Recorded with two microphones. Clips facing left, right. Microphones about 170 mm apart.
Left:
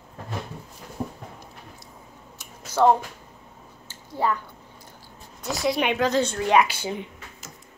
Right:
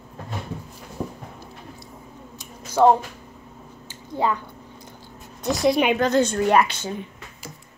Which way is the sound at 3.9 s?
20° right (ahead or behind).